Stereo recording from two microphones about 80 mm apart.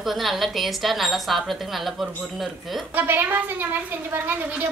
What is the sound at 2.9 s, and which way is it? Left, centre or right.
Speech, right.